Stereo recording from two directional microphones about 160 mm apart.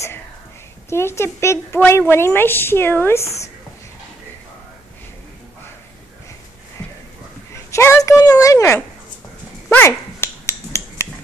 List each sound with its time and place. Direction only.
0.8 s a woman's voice: 15° left (ahead or behind)
6.8 s a sound: 20° left (ahead or behind)
7.7 s speech: 15° left (ahead or behind)
9.7 s finger snapping: 15° left (ahead or behind)